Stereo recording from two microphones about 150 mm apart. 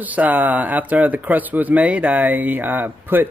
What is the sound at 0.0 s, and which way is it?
Speech, 10° right (ahead or behind).